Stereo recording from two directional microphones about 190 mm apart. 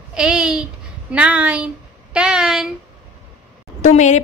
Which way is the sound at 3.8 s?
40° left (ahead or behind).